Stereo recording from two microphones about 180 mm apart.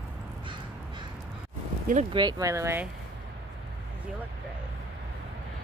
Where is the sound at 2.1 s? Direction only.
20° right (ahead or behind).